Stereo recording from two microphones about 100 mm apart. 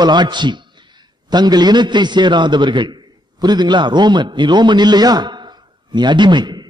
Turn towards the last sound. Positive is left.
turn(degrees=-45)  # may be behind; listen again after turning